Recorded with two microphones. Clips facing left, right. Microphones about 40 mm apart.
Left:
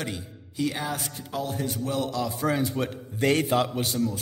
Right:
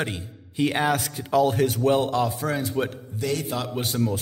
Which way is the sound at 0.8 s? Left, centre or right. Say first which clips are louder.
Right 8 dB; right.